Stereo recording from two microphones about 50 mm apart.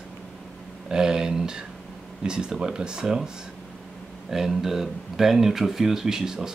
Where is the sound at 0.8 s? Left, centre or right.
Centre.